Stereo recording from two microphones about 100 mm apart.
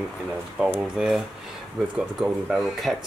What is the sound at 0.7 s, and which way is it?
Speech, 10° right (ahead or behind).